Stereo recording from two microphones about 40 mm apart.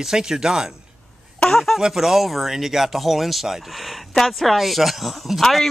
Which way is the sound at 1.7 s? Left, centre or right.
Centre.